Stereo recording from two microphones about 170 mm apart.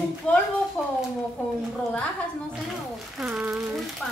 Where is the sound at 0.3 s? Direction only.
5° left (ahead or behind).